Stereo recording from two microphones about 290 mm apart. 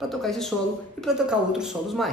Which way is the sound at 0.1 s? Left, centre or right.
Centre.